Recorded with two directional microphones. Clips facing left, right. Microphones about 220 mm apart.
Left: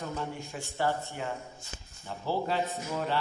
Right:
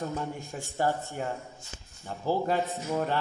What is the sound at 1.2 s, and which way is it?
A man's voice, 45° right (ahead or behind).